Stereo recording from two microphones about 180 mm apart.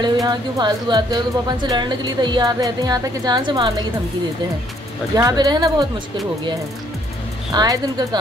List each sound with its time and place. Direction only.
0.0 s speech: 25° right (ahead or behind)
5.1 s speech: 20° right (ahead or behind)
7.5 s speech: 20° right (ahead or behind)